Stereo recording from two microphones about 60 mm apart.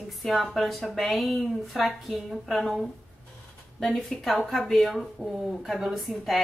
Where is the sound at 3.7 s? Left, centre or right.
Centre.